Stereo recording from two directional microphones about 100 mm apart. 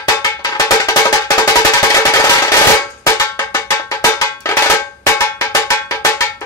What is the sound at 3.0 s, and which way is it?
Cowbell, 30° left (ahead or behind).